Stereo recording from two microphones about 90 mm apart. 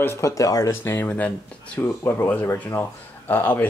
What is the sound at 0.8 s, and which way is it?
Speech, 25° left (ahead or behind).